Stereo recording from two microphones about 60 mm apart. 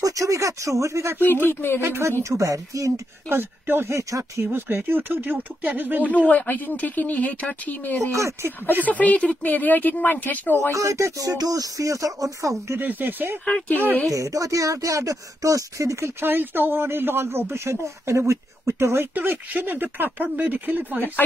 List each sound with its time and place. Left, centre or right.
0.0 s speech: right
1.2 s speech: left
1.8 s speech: right
2.2 s speech: right
3.3 s speech: right
6.0 s speech: left
8.1 s speech: right
8.8 s speech: left
10.7 s speech: right
12.7 s speech: right
14.0 s speech: right
16.2 s speech: right
17.8 s speech: right
19.1 s speech: right